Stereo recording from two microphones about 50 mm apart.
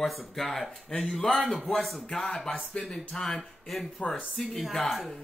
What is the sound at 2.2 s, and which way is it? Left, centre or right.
Speech, centre.